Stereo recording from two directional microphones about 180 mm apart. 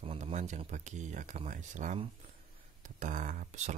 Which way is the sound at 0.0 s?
35° right (ahead or behind).